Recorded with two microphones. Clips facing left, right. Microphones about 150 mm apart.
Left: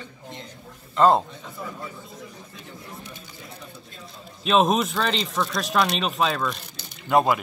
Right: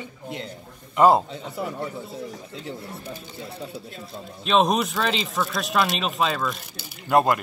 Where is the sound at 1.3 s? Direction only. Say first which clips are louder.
Right 6 dB; 70° right (ahead or behind).